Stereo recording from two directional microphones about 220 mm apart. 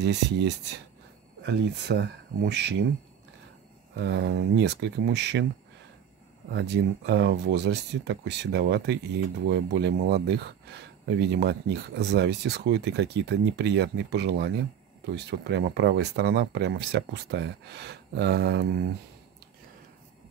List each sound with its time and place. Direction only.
0.0 s speech: 50° right (ahead or behind)
3.9 s speech: 50° right (ahead or behind)
6.5 s speech: 50° right (ahead or behind)